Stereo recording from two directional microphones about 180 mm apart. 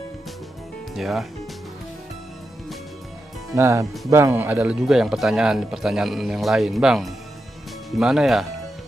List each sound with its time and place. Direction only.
0.9 s speech: centre (ahead or behind)
3.5 s speech: 15° right (ahead or behind)